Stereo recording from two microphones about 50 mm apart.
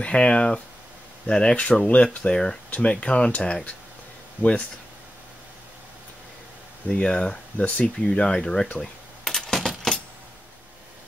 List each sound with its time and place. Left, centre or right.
0.0 s speech: left
2.2 s speech: centre
6.9 s speech: centre
7.5 s speech: left
7.8 s speech: left
8.7 s a sound: centre
9.3 s coin: centre